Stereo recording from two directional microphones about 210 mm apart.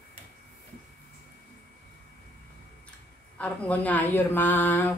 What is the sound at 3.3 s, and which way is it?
Speech, 5° left (ahead or behind).